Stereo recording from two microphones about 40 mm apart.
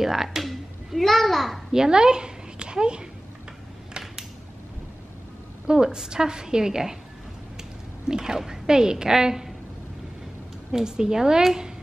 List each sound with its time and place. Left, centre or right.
0.0 s a child's voice: centre
1.7 s a child's voice: centre
5.7 s a woman's voice: centre
8.1 s speech: centre
10.7 s speech: centre